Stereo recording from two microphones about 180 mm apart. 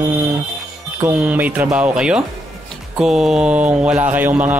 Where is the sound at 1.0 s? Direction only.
10° right (ahead or behind).